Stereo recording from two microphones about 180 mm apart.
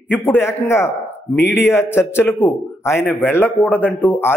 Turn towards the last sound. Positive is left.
turn(degrees=10)  # may be behind; listen again after turning